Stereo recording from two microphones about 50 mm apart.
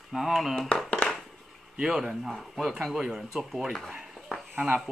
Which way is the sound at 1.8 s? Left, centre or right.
Centre.